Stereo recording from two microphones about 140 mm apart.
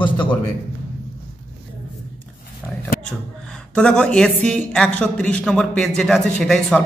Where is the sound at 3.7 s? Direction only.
5° left (ahead or behind).